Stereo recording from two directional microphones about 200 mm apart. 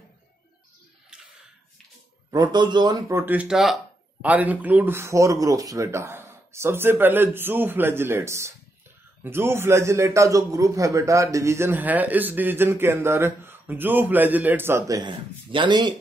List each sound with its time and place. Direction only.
2.3 s a man's voice: 20° right (ahead or behind)